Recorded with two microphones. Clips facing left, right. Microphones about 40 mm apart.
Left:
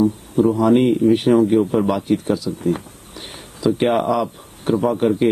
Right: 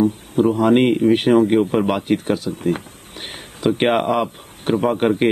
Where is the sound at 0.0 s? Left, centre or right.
Right.